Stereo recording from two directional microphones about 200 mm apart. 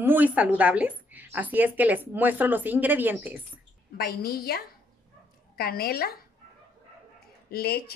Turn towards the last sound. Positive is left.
turn(degrees=50)  # may be behind; listen again after turning